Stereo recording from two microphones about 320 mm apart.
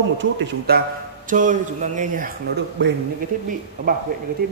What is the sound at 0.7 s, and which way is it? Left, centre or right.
A man's voice, right.